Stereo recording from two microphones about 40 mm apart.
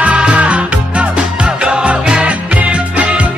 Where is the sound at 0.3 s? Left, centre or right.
Right.